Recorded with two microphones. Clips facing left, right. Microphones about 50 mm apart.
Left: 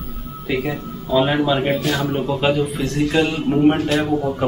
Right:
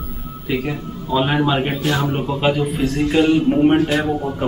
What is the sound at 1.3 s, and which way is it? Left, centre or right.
Speech, right.